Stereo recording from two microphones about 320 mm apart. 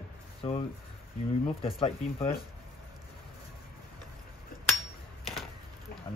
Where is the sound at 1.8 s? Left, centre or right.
Centre.